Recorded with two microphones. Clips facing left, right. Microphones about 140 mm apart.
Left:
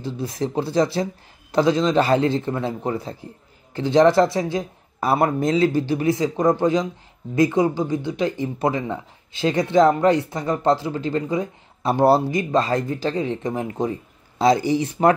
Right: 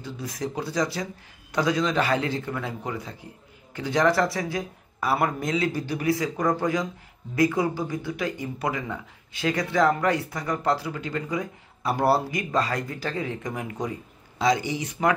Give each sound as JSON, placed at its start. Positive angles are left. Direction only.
{"t": 0.0, "sound": "speech", "side_deg": 30}